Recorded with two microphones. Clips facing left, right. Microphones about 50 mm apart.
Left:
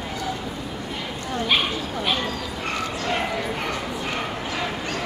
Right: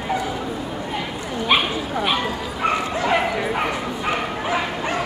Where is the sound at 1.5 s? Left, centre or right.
Centre.